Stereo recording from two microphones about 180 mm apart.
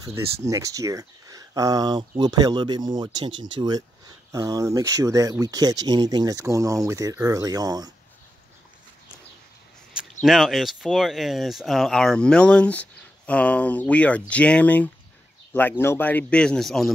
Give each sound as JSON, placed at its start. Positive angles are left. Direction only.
{"t": 0.0, "sound": "speech", "side_deg": -15}
{"t": 10.2, "sound": "speech", "side_deg": 0}